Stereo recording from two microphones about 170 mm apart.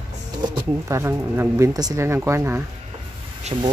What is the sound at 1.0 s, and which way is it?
Speech, 15° right (ahead or behind).